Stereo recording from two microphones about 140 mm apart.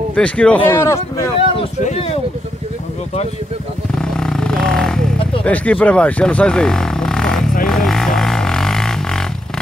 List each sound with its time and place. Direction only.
0.1 s speech: 10° left (ahead or behind)
1.8 s speech: 50° left (ahead or behind)
3.9 s vehicle: 5° left (ahead or behind)
5.4 s speech: 10° left (ahead or behind)
7.6 s music: 5° left (ahead or behind)